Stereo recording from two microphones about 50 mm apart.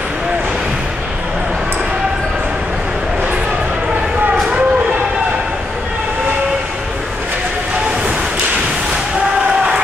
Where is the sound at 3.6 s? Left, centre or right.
Right.